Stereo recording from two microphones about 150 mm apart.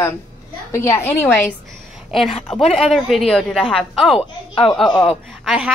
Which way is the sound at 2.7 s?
Centre (ahead or behind).